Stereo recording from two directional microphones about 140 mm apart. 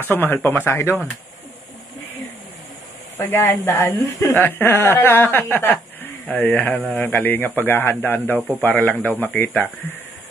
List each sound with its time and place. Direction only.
0.1 s speech: 15° left (ahead or behind)
3.2 s speech: 15° left (ahead or behind)